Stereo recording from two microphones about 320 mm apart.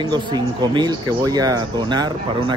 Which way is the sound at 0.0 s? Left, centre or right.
Centre.